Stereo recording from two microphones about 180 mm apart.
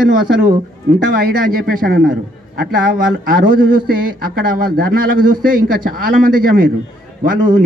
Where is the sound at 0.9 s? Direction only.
55° right (ahead or behind).